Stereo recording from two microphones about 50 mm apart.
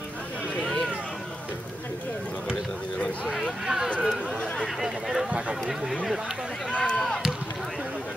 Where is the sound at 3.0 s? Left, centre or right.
Left.